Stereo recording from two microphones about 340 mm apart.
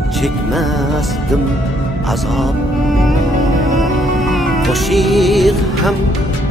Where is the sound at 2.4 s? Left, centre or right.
Centre.